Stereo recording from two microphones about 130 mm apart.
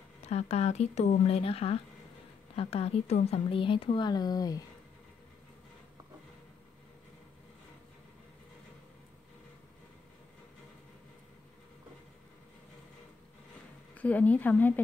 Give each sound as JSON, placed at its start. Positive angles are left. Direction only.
{"t": 0.2, "sound": "speech", "side_deg": 55}
{"t": 13.9, "sound": "speech", "side_deg": 10}